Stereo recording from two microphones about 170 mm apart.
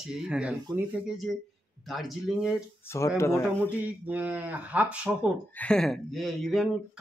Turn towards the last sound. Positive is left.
turn(degrees=0)  # may be behind; listen again after turning